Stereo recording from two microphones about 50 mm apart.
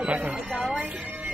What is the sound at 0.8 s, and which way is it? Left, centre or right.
Music, right.